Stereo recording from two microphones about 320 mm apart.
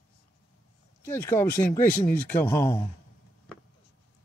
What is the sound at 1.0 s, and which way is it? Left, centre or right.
Speech, centre.